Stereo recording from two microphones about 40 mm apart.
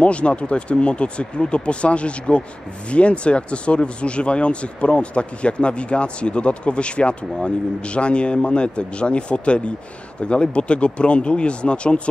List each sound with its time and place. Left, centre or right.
0.0 s speech: left